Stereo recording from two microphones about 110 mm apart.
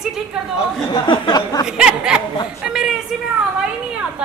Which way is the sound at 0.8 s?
45° left (ahead or behind).